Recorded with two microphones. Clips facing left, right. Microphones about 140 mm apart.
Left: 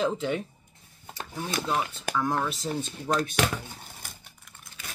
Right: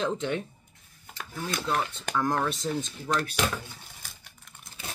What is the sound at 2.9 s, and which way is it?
Speech, 35° left (ahead or behind).